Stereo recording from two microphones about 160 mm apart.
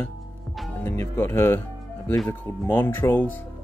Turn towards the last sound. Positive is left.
turn(degrees=10)  # may be behind; listen again after turning